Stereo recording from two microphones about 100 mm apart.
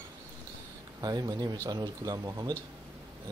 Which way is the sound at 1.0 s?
45° right (ahead or behind).